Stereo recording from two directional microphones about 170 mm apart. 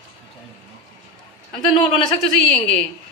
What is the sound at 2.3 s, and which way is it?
Speech, 5° left (ahead or behind).